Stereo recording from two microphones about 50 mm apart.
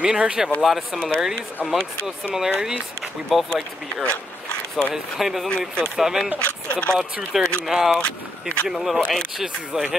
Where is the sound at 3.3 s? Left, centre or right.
Centre.